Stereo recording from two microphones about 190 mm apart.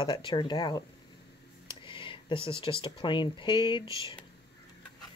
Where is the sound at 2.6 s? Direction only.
25° left (ahead or behind).